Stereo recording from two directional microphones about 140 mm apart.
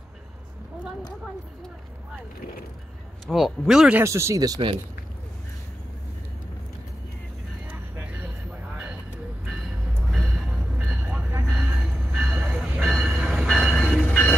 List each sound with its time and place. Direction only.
3.3 s speech: centre (ahead or behind)
4.0 s speech: 20° right (ahead or behind)
7.6 s vehicle: 15° right (ahead or behind)
10.1 s music: centre (ahead or behind)
10.8 s vehicle: 10° right (ahead or behind)
11.5 s train: 5° right (ahead or behind)